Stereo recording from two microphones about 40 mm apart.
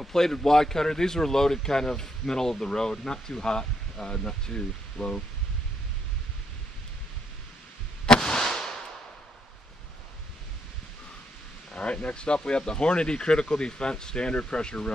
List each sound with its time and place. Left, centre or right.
0.0 s speech: centre
8.1 s fireworks: centre
11.7 s speech: left